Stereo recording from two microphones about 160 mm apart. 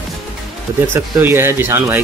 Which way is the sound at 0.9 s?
15° right (ahead or behind).